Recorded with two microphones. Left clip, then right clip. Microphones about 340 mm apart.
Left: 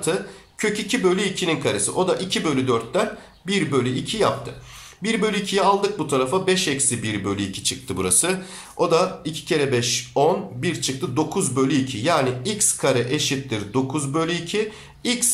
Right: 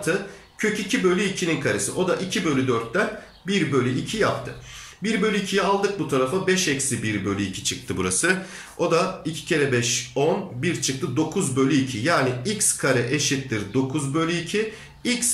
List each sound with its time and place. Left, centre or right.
0.6 s speech: centre